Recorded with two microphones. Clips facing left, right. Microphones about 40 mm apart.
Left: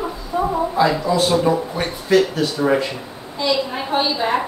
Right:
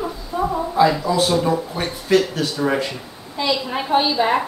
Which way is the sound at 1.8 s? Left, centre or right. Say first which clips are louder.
Left 1 dB; centre.